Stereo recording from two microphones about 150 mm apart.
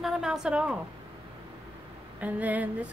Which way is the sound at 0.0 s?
5° right (ahead or behind).